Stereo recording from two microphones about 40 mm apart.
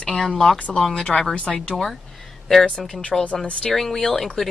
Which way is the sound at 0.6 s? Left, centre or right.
Left.